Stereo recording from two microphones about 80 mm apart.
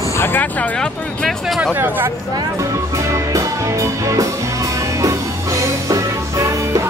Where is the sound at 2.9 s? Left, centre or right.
Right.